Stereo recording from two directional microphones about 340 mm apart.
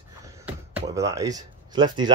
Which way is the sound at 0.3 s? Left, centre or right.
Centre.